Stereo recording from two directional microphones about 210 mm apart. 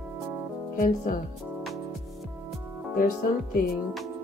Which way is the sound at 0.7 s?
40° left (ahead or behind).